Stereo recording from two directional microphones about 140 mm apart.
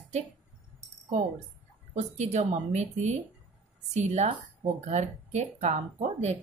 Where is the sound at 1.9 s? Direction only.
55° right (ahead or behind).